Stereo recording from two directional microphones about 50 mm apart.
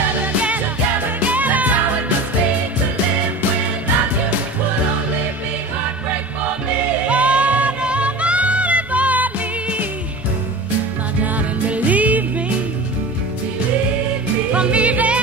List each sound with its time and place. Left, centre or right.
0.2 s music: right
7.1 s music: right
11.2 s music: right
14.5 s music: right